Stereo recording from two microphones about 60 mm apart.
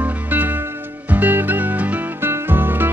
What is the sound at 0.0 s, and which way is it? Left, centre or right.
Music, right.